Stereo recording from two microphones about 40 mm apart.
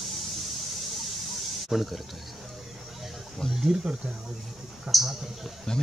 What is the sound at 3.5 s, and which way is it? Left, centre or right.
Speech, centre.